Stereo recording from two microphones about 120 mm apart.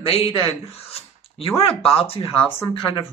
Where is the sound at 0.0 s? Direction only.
50° left (ahead or behind).